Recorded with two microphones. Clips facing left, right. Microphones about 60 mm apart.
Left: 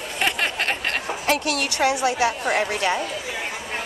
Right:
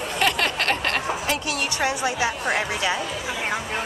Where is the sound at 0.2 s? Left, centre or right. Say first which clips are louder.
Right 1 dB; centre.